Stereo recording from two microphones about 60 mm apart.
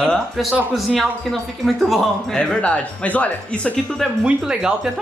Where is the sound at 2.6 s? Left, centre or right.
Left.